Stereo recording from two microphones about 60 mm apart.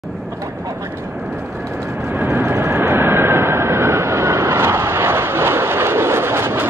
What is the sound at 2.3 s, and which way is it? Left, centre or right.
Vehicle, right.